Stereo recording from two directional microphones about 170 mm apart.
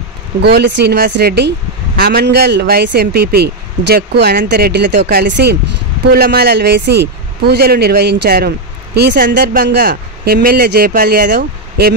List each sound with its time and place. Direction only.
0.4 s speech: 70° right (ahead or behind)
2.0 s speech: 65° right (ahead or behind)